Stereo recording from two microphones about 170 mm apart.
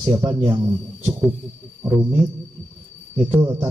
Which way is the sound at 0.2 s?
25° right (ahead or behind).